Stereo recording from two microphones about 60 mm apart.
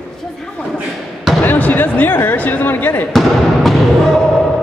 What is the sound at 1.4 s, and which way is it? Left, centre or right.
Speech, left.